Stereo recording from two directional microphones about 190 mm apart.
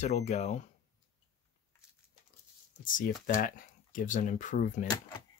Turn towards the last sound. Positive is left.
turn(degrees=40)  # may be behind; listen again after turning